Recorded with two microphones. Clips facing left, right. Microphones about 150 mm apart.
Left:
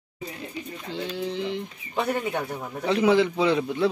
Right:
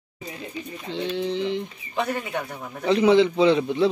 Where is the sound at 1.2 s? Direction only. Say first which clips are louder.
Right 3 dB; 5° left (ahead or behind).